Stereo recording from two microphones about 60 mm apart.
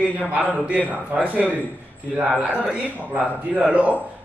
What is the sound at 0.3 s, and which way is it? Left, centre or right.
Speech, right.